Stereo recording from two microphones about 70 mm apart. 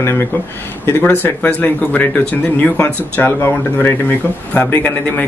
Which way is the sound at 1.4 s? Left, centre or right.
Left.